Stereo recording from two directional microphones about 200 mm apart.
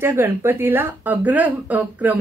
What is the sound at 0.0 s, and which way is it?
A woman's voice, 10° right (ahead or behind).